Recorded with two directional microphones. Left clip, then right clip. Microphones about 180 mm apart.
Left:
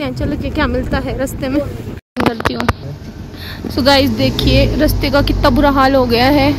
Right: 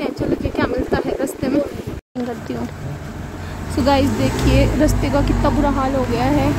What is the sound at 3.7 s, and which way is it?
Speech, centre (ahead or behind).